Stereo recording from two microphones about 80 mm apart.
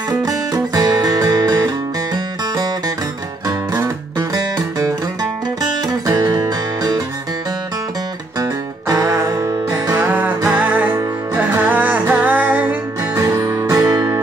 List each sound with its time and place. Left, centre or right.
0.2 s music: right
3.7 s music: right
4.3 s music: right
6.1 s music: right
8.4 s music: right
9.9 s music: right
13.2 s music: right